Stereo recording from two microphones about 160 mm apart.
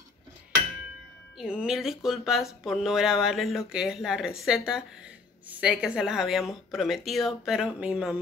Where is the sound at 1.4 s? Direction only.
5° right (ahead or behind).